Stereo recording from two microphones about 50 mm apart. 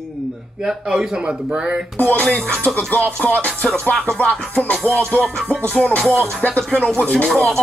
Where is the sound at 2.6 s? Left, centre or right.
Left.